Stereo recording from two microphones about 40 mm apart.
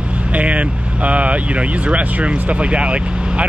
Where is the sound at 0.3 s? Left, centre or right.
Right.